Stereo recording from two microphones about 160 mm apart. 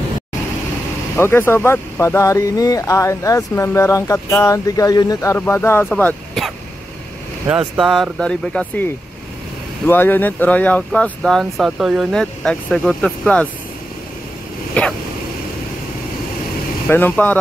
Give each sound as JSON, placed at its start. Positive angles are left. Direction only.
{"t": 1.1, "sound": "speech", "side_deg": 15}
{"t": 7.4, "sound": "speech", "side_deg": -5}
{"t": 14.7, "sound": "vehicle", "side_deg": 5}
{"t": 16.8, "sound": "speech", "side_deg": 10}